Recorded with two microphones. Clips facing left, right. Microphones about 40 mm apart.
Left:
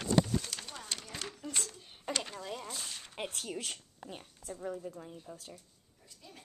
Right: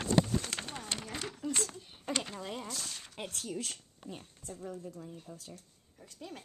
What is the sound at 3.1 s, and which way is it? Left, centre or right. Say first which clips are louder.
A woman's voice: even; centre.